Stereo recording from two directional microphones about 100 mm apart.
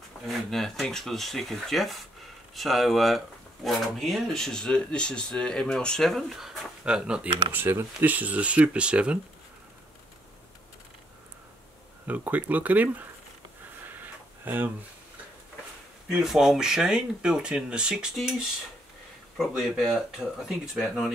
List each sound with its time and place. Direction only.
0.3 s speech: 5° left (ahead or behind)
7.5 s speech: 20° right (ahead or behind)
12.1 s speech: 15° right (ahead or behind)
13.8 s a sound: 20° right (ahead or behind)
16.1 s speech: 5° right (ahead or behind)